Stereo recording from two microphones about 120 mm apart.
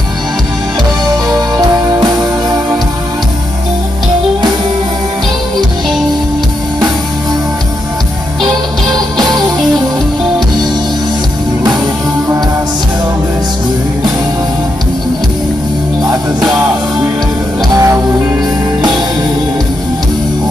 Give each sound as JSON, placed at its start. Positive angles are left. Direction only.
{"t": 1.3, "sound": "music", "side_deg": -35}
{"t": 9.2, "sound": "music", "side_deg": 0}
{"t": 16.3, "sound": "music", "side_deg": -10}
{"t": 17.7, "sound": "music", "side_deg": -25}